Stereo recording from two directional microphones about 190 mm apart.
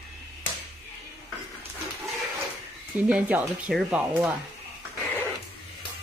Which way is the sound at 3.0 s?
5° right (ahead or behind).